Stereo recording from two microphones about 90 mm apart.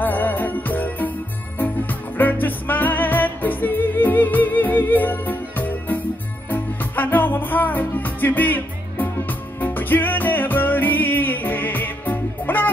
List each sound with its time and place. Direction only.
0.0 s music: 20° left (ahead or behind)